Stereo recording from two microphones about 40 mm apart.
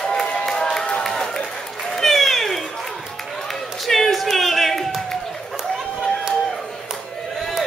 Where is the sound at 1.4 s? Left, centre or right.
Centre.